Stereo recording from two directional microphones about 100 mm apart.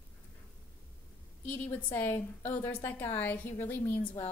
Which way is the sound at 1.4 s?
20° left (ahead or behind).